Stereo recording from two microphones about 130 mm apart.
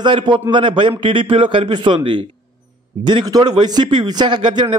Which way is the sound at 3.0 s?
35° right (ahead or behind).